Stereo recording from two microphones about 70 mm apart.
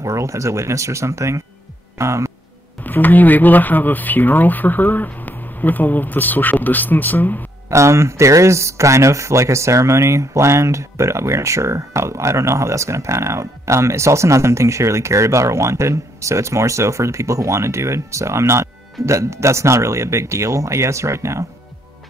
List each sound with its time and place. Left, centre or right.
0.0 s speech: right
2.8 s speech: left
7.7 s speech: right